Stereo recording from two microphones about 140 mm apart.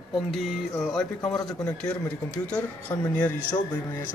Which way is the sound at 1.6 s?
20° left (ahead or behind).